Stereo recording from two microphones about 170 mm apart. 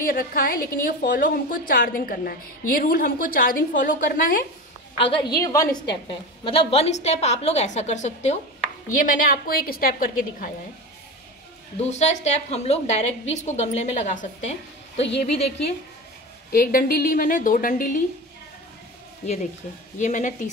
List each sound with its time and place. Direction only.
0.0 s a woman's voice: 60° left (ahead or behind)
4.9 s a woman's voice: 30° left (ahead or behind); by 10.5 s 55° left (ahead or behind)
11.8 s a woman's voice: 40° left (ahead or behind)
16.5 s a woman's voice: 60° left (ahead or behind)
20.0 s a woman's voice: 45° left (ahead or behind)